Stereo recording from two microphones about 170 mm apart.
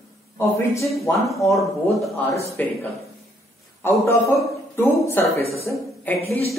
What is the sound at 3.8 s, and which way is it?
A man's voice, 15° left (ahead or behind).